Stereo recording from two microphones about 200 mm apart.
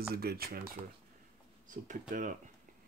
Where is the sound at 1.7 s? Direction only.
40° right (ahead or behind).